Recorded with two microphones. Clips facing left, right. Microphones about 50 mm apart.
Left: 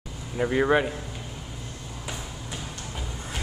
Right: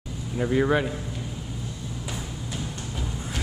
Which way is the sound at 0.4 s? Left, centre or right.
Centre.